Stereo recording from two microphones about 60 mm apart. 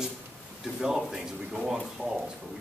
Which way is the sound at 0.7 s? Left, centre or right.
Centre.